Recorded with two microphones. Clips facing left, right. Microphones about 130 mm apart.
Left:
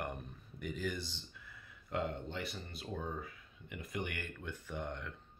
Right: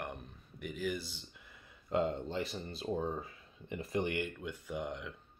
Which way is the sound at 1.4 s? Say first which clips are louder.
Right 4 dB; 25° right (ahead or behind).